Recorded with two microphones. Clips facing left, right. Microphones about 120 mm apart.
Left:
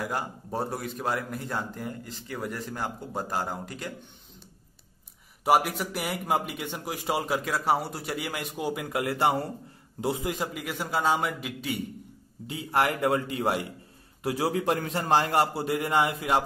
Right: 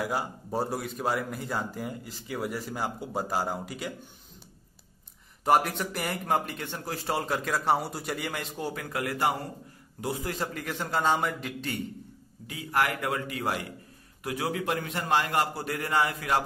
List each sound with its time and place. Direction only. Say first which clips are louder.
0.0 s a man's voice: right 1 dB; 5° right (ahead or behind)
5.4 s a man's voice: left 1 dB; 5° left (ahead or behind)
12.4 s a man's voice: left 2 dB; 25° left (ahead or behind)